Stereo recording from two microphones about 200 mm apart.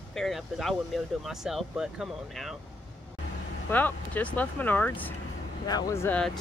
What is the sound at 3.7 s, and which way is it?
Speech, 10° left (ahead or behind).